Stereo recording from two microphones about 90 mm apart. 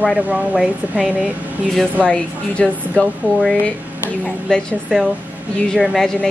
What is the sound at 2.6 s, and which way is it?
Speech, 5° left (ahead or behind).